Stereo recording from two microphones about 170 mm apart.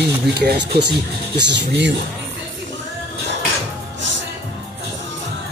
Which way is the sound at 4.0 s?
90° right.